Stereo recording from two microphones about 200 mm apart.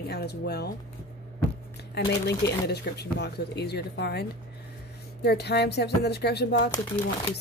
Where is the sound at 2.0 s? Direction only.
60° left (ahead or behind).